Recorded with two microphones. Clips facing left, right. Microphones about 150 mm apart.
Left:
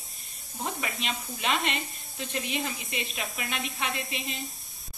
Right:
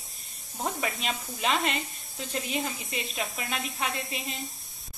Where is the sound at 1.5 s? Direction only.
Centre (ahead or behind).